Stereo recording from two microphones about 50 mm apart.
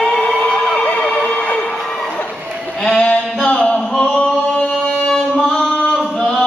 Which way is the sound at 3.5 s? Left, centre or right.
Centre.